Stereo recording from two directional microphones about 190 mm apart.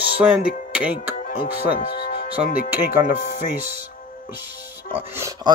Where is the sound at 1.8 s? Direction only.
50° left (ahead or behind).